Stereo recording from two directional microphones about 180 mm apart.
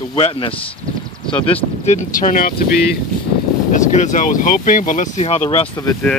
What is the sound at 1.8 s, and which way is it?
Speech, 45° left (ahead or behind).